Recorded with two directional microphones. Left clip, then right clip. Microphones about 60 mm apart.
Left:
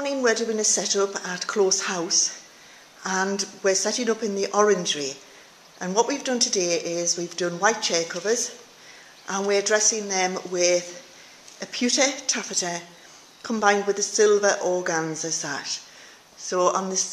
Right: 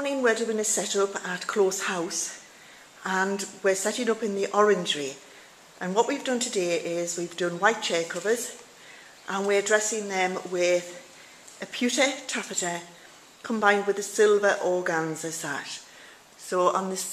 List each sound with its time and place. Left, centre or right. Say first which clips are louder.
0.0 s a woman's voice: left 2 dB; left
3.0 s speech: left 1 dB; left